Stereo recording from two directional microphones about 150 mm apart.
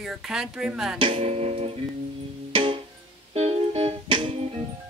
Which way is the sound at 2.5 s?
35° right (ahead or behind).